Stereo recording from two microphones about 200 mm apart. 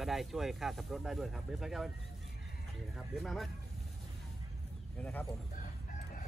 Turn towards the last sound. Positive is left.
turn(degrees=5)  # may be behind; listen again after turning